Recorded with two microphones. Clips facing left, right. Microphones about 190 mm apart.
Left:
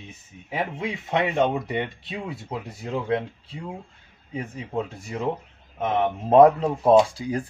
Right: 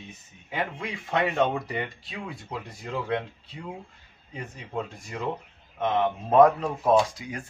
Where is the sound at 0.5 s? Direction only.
25° left (ahead or behind).